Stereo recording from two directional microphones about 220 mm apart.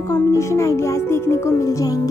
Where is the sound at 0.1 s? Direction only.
15° left (ahead or behind).